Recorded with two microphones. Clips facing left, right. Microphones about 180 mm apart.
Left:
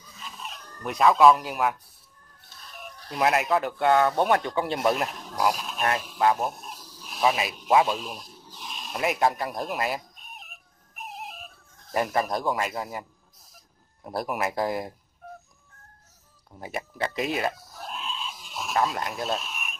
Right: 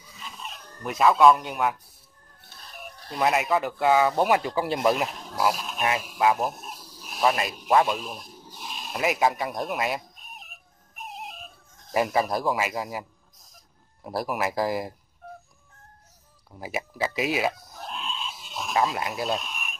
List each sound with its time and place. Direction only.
0.4 s speech: centre (ahead or behind)
3.2 s speech: centre (ahead or behind)
6.3 s a sound: centre (ahead or behind)
7.2 s speech: centre (ahead or behind)
8.7 s a sound: centre (ahead or behind)
14.0 s speech: centre (ahead or behind)
16.5 s speech: 5° right (ahead or behind)
17.6 s a sound: 20° right (ahead or behind)
17.8 s dog: centre (ahead or behind)
18.6 s speech: centre (ahead or behind)